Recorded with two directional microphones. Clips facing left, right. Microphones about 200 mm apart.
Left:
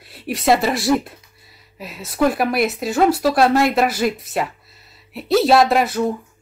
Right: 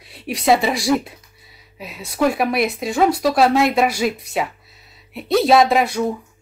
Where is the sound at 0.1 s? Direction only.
Centre (ahead or behind).